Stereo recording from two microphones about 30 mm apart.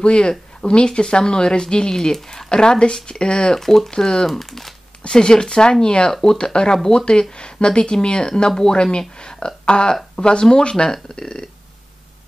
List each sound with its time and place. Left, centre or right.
0.0 s speech: left
3.5 s speech: centre
3.9 s speech: left
4.3 s speech: centre
5.0 s speech: left